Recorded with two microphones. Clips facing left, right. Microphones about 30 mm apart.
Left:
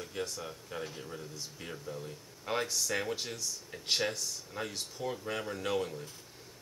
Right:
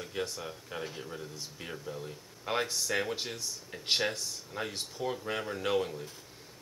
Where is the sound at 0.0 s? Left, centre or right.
Centre.